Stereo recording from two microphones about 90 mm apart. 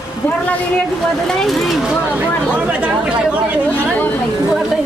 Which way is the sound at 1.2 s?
5° left (ahead or behind).